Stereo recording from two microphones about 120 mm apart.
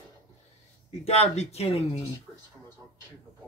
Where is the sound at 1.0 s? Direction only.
60° left (ahead or behind).